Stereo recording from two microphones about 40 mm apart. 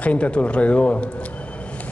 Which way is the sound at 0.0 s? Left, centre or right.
Left.